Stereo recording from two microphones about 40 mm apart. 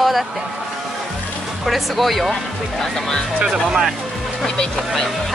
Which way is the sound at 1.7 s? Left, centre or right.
Centre.